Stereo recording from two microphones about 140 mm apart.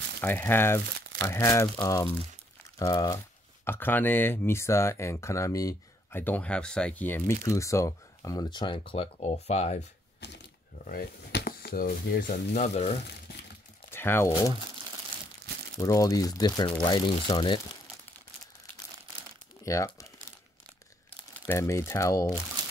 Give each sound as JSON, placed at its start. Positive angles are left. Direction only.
{"t": 0.2, "sound": "speech", "side_deg": 15}
{"t": 3.6, "sound": "speech", "side_deg": 15}
{"t": 6.2, "sound": "speech", "side_deg": 10}
{"t": 10.9, "sound": "speech", "side_deg": 90}
{"t": 12.5, "sound": "speech", "side_deg": 55}
{"t": 13.8, "sound": "crumpling", "side_deg": 15}
{"t": 15.7, "sound": "speech", "side_deg": 25}
{"t": 19.6, "sound": "crumpling", "side_deg": 20}
{"t": 21.5, "sound": "speech", "side_deg": 20}